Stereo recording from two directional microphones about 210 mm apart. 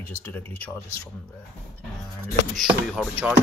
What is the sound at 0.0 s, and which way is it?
Speech, 10° left (ahead or behind).